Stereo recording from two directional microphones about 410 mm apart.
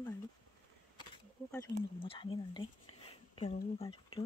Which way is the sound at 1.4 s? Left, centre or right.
Centre.